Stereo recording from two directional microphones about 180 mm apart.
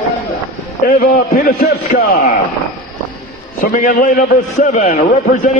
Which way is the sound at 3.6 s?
50° left (ahead or behind).